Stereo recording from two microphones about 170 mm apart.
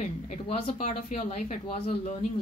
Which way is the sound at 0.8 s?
50° left (ahead or behind).